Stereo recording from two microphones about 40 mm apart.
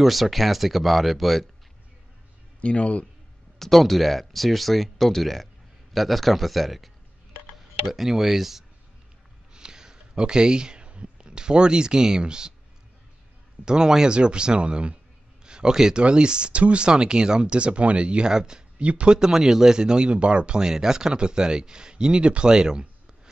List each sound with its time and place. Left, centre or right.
0.0 s speech: centre
2.6 s a man's voice: left
3.5 s speech: centre
9.5 s speech: centre
13.7 s speech: centre